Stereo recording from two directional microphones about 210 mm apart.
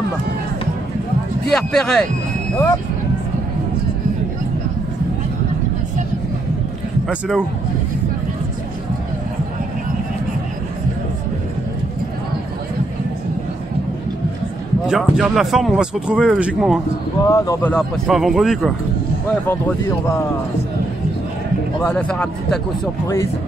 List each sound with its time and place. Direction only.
1.5 s speech: centre (ahead or behind)
7.1 s speech: 5° right (ahead or behind)
14.9 s speech: centre (ahead or behind)
17.3 s speech: 15° left (ahead or behind)
17.7 s speech: centre (ahead or behind)
21.8 s speech: 5° left (ahead or behind)